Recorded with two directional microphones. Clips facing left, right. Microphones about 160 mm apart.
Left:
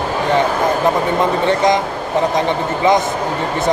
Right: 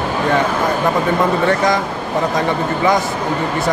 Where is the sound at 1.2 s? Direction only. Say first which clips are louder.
Left 1 dB; 20° left (ahead or behind).